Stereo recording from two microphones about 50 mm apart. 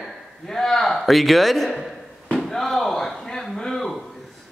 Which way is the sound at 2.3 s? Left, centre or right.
Centre.